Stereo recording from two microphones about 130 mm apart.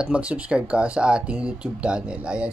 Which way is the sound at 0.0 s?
10° right (ahead or behind).